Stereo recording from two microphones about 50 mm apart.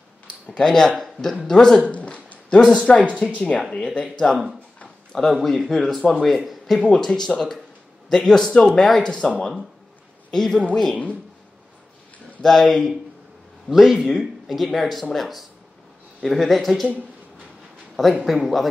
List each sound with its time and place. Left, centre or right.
0.5 s speech: centre
1.9 s a sound: left
2.7 s speech: left
4.8 s a sound: centre
5.3 s speech: centre
6.8 s speech: centre
7.1 s speech: centre
10.3 s speech: centre
12.4 s speech: centre
13.7 s speech: centre
17.9 s speech: centre